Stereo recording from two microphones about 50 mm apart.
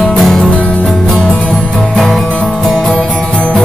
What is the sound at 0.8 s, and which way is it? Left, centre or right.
Music, centre.